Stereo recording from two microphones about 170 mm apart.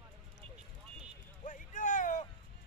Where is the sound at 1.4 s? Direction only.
50° left (ahead or behind).